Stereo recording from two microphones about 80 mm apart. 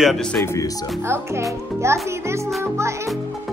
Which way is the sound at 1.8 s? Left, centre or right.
Right.